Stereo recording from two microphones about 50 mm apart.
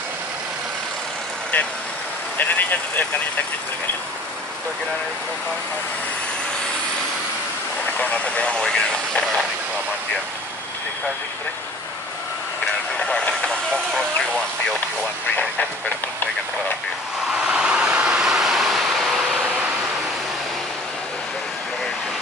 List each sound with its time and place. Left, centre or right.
2.3 s speech: left
8.0 s speech: left
12.9 s vehicle: centre
17.3 s vehicle: centre